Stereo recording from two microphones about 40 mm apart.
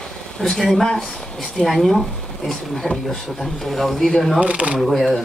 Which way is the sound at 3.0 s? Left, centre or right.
Centre.